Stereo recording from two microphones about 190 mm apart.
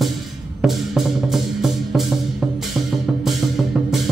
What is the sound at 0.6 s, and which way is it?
Music, centre (ahead or behind).